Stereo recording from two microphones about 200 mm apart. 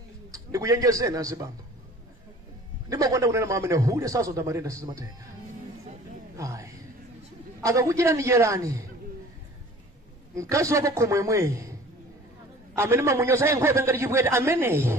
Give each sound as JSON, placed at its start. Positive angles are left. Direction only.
{"t": 0.3, "sound": "a man's voice", "side_deg": -15}
{"t": 2.9, "sound": "a man's voice", "side_deg": -15}
{"t": 6.3, "sound": "a sound", "side_deg": -15}
{"t": 7.6, "sound": "a man's voice", "side_deg": -15}
{"t": 10.5, "sound": "a man's voice", "side_deg": -15}
{"t": 12.7, "sound": "a man's voice", "side_deg": -15}